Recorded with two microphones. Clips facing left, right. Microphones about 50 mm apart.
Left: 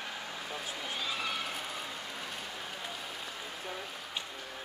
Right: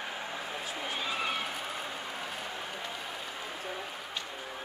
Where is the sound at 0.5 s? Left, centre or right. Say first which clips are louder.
Right 1 dB; right.